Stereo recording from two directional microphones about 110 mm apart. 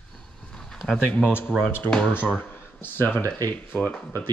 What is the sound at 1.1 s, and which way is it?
Speech, 15° left (ahead or behind).